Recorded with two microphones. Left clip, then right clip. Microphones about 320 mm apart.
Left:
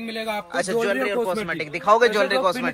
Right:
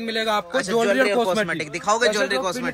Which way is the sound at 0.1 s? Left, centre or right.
Centre.